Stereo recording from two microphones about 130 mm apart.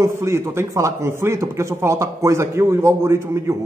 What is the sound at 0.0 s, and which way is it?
Speech, 20° right (ahead or behind).